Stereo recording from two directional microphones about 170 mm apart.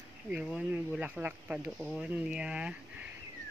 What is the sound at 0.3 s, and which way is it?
Speech, 5° right (ahead or behind).